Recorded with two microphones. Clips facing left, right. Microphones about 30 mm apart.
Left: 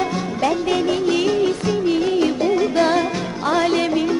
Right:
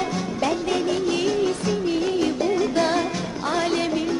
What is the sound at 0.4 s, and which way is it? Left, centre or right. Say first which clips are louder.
Music: left 4 dB; centre.